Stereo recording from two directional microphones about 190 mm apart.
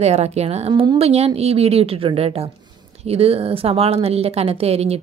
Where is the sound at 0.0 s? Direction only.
35° right (ahead or behind).